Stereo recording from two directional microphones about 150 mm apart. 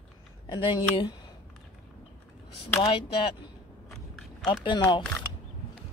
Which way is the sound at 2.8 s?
35° left (ahead or behind).